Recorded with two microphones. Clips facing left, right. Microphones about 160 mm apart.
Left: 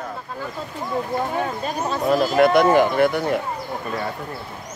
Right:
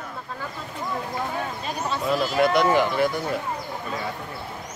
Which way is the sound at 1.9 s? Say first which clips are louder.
Left 5 dB; 40° left (ahead or behind).